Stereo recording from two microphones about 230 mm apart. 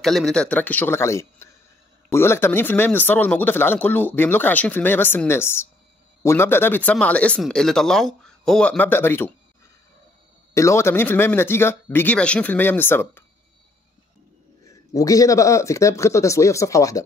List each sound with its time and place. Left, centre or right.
0.0 s speech: centre
10.5 s speech: centre
15.0 s speech: centre